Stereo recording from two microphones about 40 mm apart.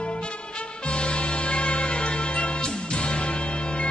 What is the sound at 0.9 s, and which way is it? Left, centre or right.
Music, left.